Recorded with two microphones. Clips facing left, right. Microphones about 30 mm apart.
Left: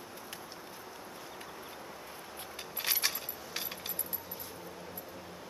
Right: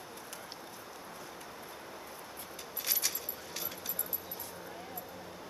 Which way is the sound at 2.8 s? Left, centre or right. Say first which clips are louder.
Left 4 dB; left.